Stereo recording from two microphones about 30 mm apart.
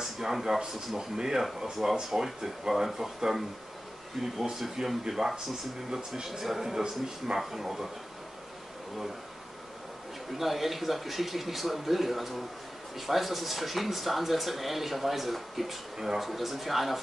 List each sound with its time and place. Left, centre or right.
0.3 s speech: centre
0.6 s speech: right
10.3 s speech: centre